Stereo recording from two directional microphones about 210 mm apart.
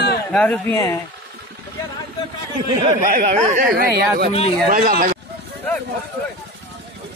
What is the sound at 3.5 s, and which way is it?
Speech, 45° right (ahead or behind).